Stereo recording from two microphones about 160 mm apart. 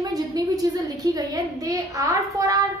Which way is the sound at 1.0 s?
25° right (ahead or behind).